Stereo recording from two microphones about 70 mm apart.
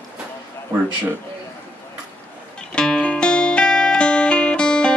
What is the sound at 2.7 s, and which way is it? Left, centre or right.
Music, centre.